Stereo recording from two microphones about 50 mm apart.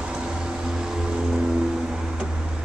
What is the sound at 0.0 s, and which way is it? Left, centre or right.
Vehicle, centre.